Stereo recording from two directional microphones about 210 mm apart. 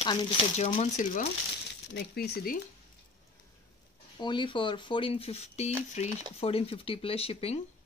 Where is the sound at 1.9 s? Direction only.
50° left (ahead or behind).